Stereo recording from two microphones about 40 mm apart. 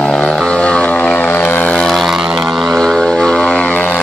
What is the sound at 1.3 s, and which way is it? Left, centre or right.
Vehicle, left.